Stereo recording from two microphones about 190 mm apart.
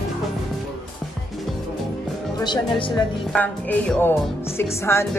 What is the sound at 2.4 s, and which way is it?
Speech, 25° left (ahead or behind).